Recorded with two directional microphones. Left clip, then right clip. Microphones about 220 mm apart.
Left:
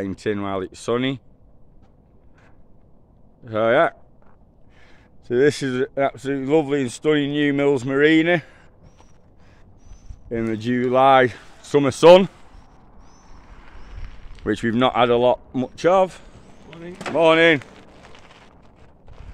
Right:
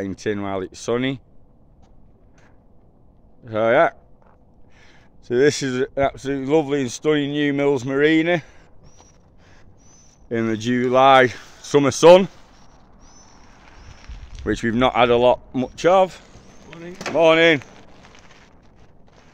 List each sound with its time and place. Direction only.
0.0 s speech: 5° left (ahead or behind)
3.4 s speech: centre (ahead or behind)
10.2 s speech: 15° right (ahead or behind); by 12.3 s centre (ahead or behind)
13.0 s a sound: 50° right (ahead or behind)
14.4 s speech: 5° left (ahead or behind)
16.5 s vehicle: 15° right (ahead or behind)
17.0 s speech: centre (ahead or behind)
17.6 s a sound: 30° left (ahead or behind)